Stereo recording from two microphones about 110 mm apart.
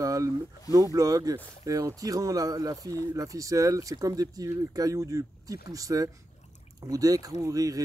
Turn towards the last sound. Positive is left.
turn(degrees=-30)  # may be behind; listen again after turning